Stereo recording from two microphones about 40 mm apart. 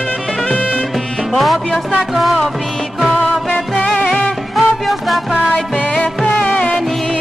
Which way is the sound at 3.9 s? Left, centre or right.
Centre.